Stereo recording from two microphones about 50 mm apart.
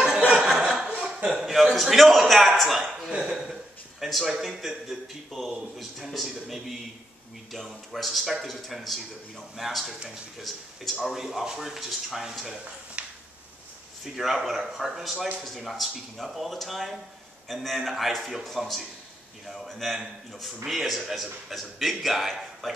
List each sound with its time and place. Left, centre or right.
0.3 s chuckle: centre
1.4 s a sound: centre
1.8 s a man's voice: centre
3.1 s speech: centre
4.0 s a man's voice: centre
13.0 s a sound: right
14.0 s a man's voice: centre